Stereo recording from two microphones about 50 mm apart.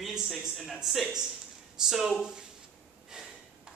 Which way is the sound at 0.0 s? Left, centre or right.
Centre.